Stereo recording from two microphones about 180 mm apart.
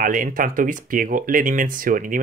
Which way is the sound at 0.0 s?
50° right (ahead or behind).